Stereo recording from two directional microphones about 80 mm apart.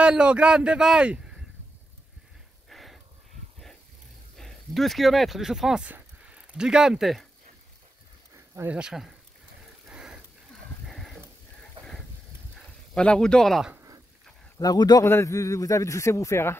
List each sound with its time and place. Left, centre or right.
0.0 s speech: centre
2.7 s a sound: centre
4.4 s speech: centre
5.9 s a sound: centre
8.6 s speech: centre
9.8 s rain: centre
10.9 s a sound: centre
12.9 s a man's voice: centre
14.6 s speech: left
15.0 s a man's voice: left